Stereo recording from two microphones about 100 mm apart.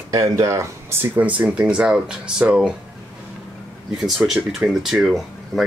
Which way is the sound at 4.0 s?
5° right (ahead or behind).